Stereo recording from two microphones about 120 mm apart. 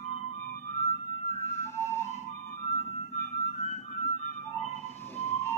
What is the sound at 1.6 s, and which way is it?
Music, 25° left (ahead or behind).